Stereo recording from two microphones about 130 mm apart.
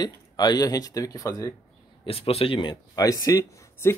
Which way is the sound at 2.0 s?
45° left (ahead or behind).